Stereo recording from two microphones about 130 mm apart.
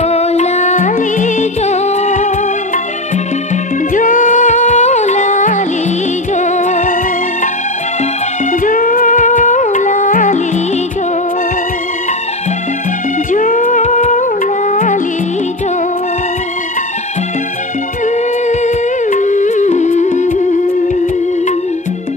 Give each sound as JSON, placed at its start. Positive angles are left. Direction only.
{"t": 0.0, "sound": "music", "side_deg": 55}
{"t": 3.9, "sound": "music", "side_deg": 85}
{"t": 8.5, "sound": "music", "side_deg": 90}
{"t": 13.3, "sound": "music", "side_deg": 80}
{"t": 18.0, "sound": "music", "side_deg": 70}